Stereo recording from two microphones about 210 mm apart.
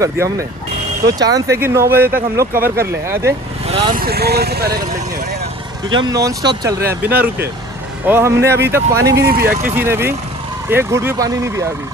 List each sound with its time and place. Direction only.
0.0 s speech: 15° right (ahead or behind)
3.6 s vehicle: 30° right (ahead or behind)
4.0 s speech: 50° right (ahead or behind)
5.9 s speech: 20° right (ahead or behind)
9.1 s speech: 45° right (ahead or behind)
9.6 s speech: 10° right (ahead or behind)